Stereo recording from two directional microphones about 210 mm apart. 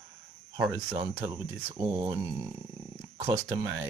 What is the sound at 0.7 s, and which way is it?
Speech, 20° right (ahead or behind).